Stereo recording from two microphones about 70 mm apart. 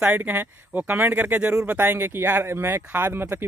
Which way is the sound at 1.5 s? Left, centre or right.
Centre.